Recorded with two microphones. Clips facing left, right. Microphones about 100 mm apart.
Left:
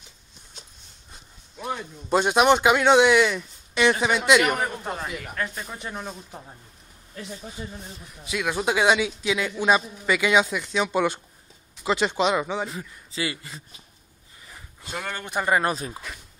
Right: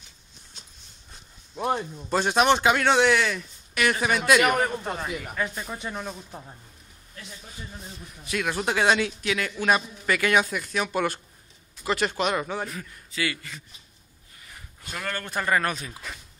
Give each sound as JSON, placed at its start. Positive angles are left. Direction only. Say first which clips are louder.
{"t": 2.0, "sound": "a man's voice", "louder": "left 3 dB", "side_deg": 15}
{"t": 4.5, "sound": "speech", "louder": "right 2 dB", "side_deg": 5}
{"t": 8.2, "sound": "a man's voice", "louder": "left 1 dB", "side_deg": 10}
{"t": 12.6, "sound": "a man's voice", "louder": "left 2 dB", "side_deg": 25}
{"t": 14.8, "sound": "a man's voice", "louder": "even", "side_deg": 20}
{"t": 15.7, "sound": "speech", "louder": "left 5 dB", "side_deg": 30}